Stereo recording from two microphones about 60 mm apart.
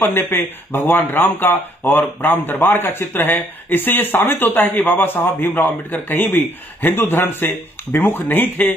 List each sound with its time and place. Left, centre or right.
0.1 s a man's voice: left